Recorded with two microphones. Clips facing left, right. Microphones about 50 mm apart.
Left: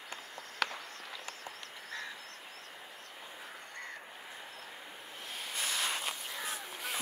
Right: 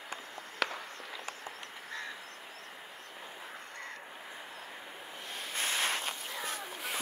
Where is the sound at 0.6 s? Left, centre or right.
Centre.